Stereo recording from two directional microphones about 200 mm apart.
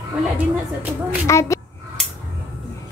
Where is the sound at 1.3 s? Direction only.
15° left (ahead or behind).